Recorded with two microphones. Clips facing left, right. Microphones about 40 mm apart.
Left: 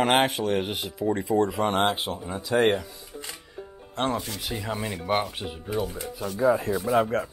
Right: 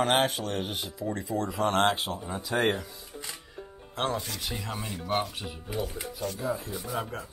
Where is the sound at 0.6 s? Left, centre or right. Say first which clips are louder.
Left 5 dB; left.